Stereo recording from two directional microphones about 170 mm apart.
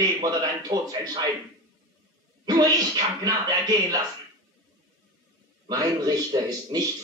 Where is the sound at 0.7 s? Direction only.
25° right (ahead or behind).